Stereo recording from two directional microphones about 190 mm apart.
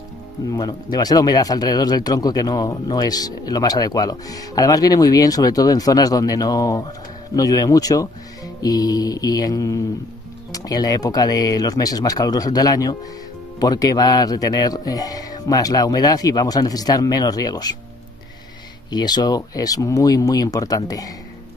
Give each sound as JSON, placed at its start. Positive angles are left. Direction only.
{"t": 0.5, "sound": "speech", "side_deg": 20}
{"t": 18.9, "sound": "speech", "side_deg": 20}